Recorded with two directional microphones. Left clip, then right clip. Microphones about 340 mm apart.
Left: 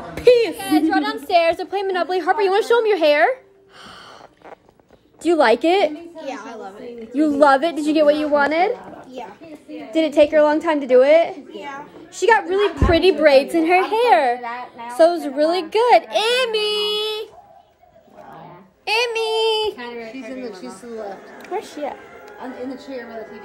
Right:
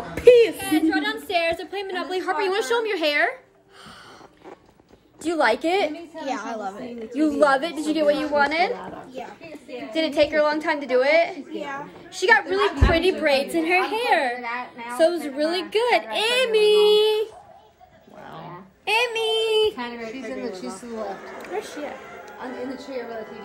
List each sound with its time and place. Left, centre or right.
0.1 s a woman's voice: centre
5.2 s a woman's voice: left
6.1 s speech: centre
7.2 s a woman's voice: left
12.8 s a woman's voice: left; by 17.3 s centre
18.9 s a child's voice: centre
20.0 s speech: right
21.4 s speech: centre